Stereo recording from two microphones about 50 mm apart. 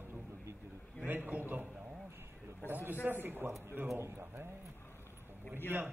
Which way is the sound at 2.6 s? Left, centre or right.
Right.